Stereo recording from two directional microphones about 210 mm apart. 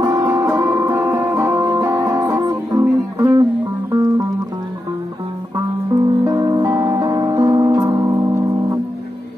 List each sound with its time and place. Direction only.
0.0 s music: 15° right (ahead or behind)
6.2 s music: 20° right (ahead or behind)